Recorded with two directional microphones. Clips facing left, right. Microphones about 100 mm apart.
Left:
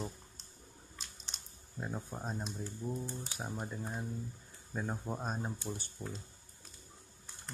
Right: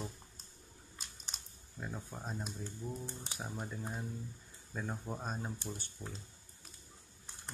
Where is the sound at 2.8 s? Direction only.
40° left (ahead or behind).